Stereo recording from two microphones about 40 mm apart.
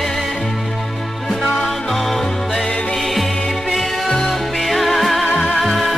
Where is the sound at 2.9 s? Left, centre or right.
Centre.